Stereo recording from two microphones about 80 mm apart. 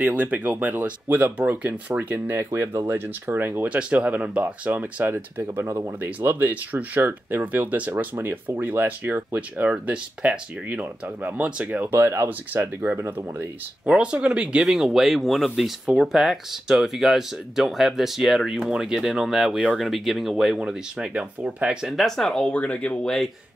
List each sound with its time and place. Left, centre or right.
0.0 s speech: centre
2.5 s speech: right
6.0 s speech: right
13.8 s speech: centre
21.8 s speech: centre
22.5 s speech: centre